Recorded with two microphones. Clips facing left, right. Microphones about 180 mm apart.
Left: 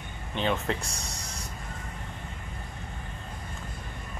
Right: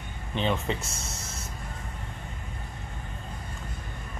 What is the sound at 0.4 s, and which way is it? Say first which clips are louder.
Speech: even; centre (ahead or behind).